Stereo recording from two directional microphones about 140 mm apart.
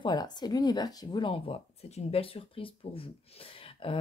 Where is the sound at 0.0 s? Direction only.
30° left (ahead or behind).